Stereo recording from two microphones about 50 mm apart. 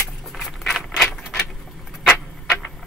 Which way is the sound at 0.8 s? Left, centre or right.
Centre.